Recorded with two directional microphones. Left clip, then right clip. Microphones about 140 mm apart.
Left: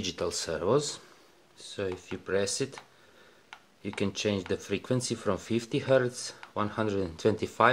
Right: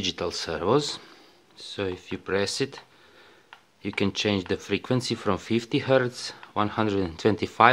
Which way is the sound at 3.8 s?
20° right (ahead or behind).